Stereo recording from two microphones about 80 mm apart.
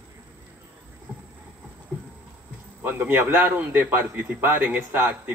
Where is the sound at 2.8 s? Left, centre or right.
Right.